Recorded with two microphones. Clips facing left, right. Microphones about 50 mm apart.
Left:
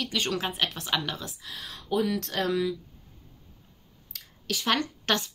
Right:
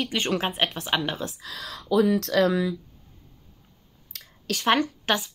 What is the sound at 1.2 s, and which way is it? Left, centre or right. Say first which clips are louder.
Speech: right 6 dB; right.